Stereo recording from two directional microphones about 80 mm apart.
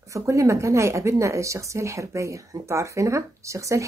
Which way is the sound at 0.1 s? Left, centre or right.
Right.